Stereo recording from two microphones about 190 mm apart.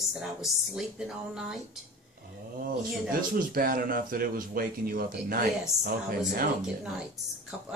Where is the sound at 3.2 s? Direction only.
50° right (ahead or behind).